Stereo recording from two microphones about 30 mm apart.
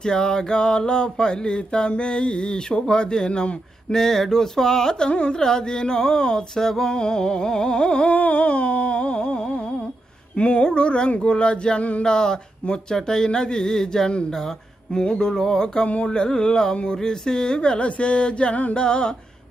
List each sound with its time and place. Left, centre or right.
0.0 s mantra: left
3.9 s a sound: centre
5.1 s mantra: left
5.4 s mantra: left
6.5 s a sound: centre
6.9 s mantra: left
8.2 s a sound: left
10.3 s mantra: left; by 14.1 s centre
14.9 s mantra: left